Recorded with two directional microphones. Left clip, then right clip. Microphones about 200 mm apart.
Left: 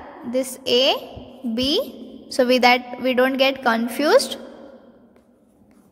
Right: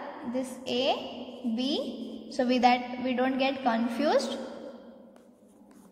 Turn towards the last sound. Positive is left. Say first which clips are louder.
# left 9 dB
turn(degrees=35)  # may be behind; listen again after turning